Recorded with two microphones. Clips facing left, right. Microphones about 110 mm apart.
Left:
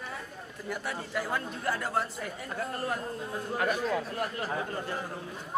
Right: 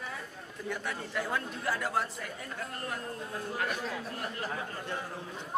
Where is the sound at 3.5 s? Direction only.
45° left (ahead or behind).